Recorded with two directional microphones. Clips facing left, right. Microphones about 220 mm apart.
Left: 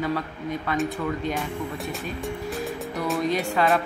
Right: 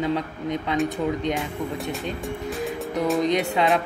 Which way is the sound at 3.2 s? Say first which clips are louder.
Left 1 dB; 20° right (ahead or behind).